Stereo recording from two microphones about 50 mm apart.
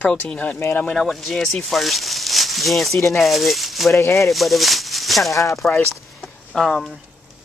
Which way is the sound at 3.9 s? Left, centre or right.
Left.